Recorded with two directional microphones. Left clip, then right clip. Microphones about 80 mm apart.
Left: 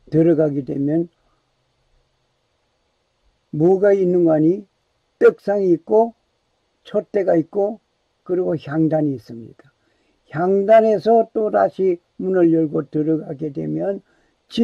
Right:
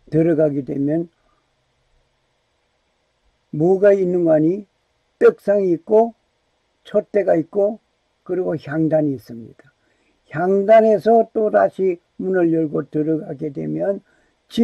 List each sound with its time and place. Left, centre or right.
0.1 s speech: right
3.5 s speech: right